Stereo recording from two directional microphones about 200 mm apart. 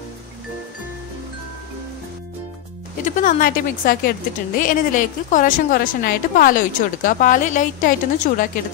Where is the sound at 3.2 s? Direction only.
40° left (ahead or behind).